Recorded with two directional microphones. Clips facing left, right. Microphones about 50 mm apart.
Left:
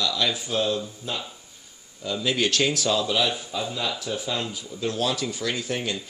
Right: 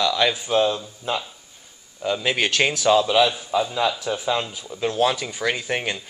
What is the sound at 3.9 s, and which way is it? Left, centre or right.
Speech, right.